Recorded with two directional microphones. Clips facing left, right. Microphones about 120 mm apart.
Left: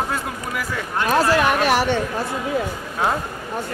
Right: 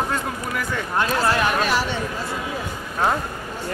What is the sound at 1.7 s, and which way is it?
Speech, 60° left (ahead or behind).